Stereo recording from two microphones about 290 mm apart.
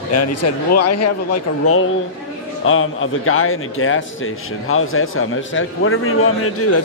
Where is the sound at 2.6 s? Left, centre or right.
Left.